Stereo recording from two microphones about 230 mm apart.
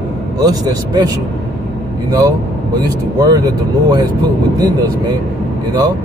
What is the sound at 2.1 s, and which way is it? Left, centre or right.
Speech, centre.